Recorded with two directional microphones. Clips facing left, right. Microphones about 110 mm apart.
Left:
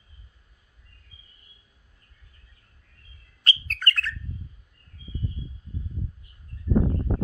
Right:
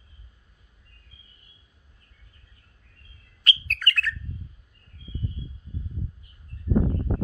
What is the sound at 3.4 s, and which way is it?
Bird, 35° left (ahead or behind).